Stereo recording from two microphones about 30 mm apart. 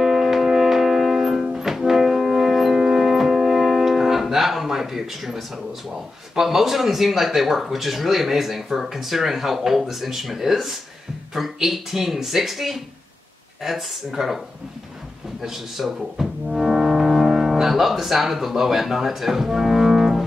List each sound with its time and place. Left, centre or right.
0.0 s music: centre
2.8 s music: centre
4.6 s speech: centre
15.4 s speech: centre
16.5 s music: centre
17.5 s speech: centre